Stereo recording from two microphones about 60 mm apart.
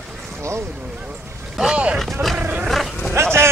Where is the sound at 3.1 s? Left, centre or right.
Right.